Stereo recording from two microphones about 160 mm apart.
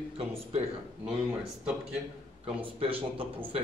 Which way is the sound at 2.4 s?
35° right (ahead or behind).